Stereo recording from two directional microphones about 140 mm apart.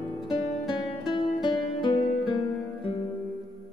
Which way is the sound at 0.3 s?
35° left (ahead or behind).